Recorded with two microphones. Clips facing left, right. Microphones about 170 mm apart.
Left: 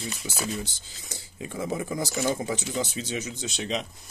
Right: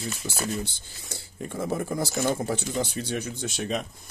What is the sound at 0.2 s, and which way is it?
Speech, 45° right (ahead or behind).